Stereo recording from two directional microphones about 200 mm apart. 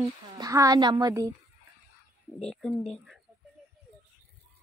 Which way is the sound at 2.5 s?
5° left (ahead or behind).